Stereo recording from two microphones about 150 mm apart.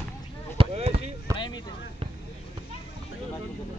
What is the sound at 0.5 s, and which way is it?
Speech, 40° right (ahead or behind).